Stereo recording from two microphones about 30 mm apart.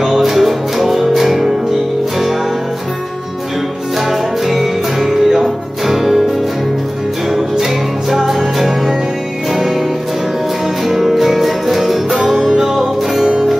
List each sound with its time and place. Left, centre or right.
0.0 s music: centre
4.5 s music: centre
8.1 s music: centre
10.9 s music: centre